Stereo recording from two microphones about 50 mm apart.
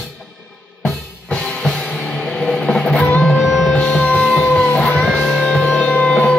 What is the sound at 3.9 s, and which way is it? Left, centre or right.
Music, left.